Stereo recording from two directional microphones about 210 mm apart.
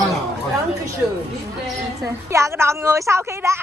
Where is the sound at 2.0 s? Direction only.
15° right (ahead or behind).